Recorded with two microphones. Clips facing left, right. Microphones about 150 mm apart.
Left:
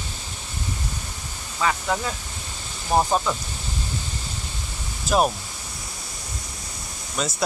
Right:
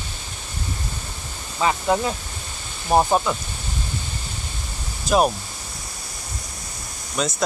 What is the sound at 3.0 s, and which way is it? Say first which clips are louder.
Speech: right 2 dB; 10° right (ahead or behind).